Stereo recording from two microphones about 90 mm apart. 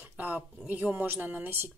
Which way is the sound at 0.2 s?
20° right (ahead or behind).